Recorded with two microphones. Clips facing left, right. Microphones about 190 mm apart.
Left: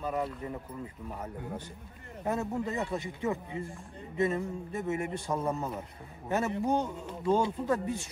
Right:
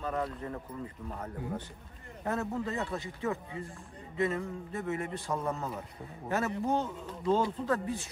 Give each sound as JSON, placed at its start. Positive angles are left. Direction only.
{"t": 0.0, "sound": "speech", "side_deg": 10}
{"t": 2.2, "sound": "speech", "side_deg": 15}